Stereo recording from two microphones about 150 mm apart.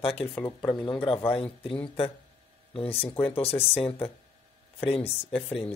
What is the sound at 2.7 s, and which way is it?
Speech, 40° left (ahead or behind).